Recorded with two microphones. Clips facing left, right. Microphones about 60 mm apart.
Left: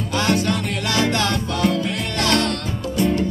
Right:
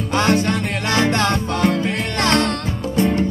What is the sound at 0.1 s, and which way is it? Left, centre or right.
Music, right.